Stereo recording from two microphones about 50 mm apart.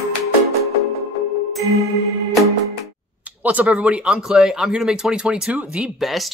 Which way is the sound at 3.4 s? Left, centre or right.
Right.